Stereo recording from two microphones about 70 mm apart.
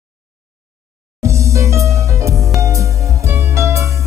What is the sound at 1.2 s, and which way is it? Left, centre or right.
Music, right.